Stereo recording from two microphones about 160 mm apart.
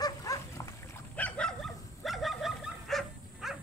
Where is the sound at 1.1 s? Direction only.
10° left (ahead or behind).